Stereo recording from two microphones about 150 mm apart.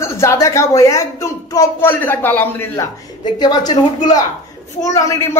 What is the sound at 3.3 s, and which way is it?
A woman's voice, 30° left (ahead or behind).